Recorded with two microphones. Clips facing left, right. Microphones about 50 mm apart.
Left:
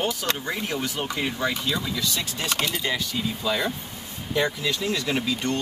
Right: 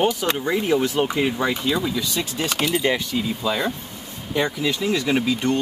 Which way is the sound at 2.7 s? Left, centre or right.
Right.